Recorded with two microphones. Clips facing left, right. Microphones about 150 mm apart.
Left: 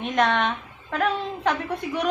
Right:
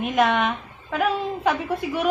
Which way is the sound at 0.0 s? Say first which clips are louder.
Right 2 dB; 5° right (ahead or behind).